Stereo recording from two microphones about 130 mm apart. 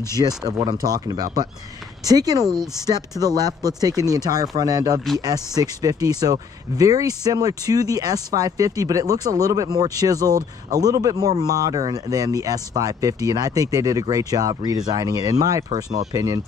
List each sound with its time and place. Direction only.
0.5 s speech: 30° right (ahead or behind)